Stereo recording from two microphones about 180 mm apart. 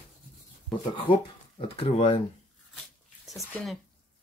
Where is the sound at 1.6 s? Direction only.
30° left (ahead or behind).